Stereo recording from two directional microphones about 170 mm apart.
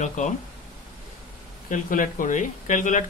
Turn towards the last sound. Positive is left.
turn(degrees=50)  # may be behind; listen again after turning